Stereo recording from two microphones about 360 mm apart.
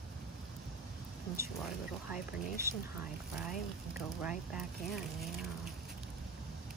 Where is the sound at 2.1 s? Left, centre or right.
Centre.